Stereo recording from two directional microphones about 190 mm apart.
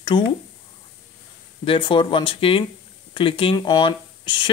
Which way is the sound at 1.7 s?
25° left (ahead or behind).